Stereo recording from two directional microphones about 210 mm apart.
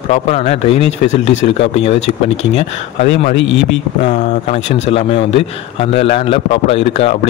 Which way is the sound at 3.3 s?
65° left (ahead or behind).